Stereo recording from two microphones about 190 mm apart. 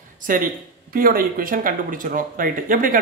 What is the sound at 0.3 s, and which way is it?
Speech, 45° right (ahead or behind).